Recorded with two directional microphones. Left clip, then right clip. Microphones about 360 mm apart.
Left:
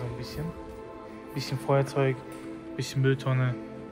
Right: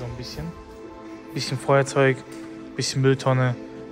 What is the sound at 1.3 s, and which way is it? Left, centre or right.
Speech, right.